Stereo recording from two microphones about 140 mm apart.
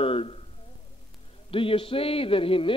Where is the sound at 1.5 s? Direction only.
40° left (ahead or behind).